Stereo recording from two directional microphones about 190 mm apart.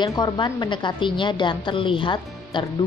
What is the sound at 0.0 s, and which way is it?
A woman's voice, 20° left (ahead or behind).